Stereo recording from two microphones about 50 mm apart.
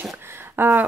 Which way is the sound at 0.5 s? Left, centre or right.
Right.